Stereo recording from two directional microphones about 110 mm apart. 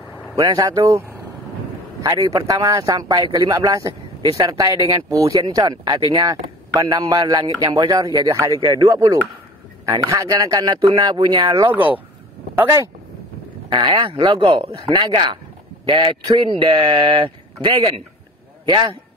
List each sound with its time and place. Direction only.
0.4 s speech: 40° right (ahead or behind)
0.9 s vehicle: 20° right (ahead or behind)
2.0 s speech: 35° right (ahead or behind)
8.5 s speech: 45° right (ahead or behind)
8.9 s speech: 30° right (ahead or behind)
12.5 s speech: 25° right (ahead or behind)
13.7 s speech: 45° right (ahead or behind)